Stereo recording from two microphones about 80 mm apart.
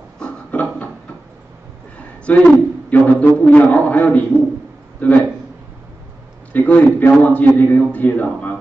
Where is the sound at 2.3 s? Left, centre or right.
Centre.